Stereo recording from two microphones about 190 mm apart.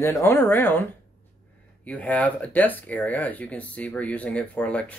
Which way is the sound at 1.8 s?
5° left (ahead or behind).